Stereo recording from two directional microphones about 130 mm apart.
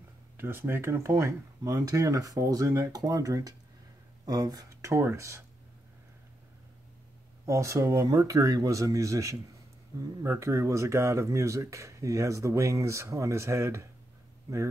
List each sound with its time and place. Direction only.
0.4 s speech: 15° right (ahead or behind)
7.4 s speech: 25° right (ahead or behind)